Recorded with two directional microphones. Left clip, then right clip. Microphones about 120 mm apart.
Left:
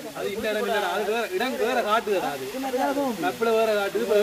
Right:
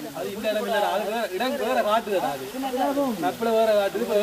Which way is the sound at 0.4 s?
90° right.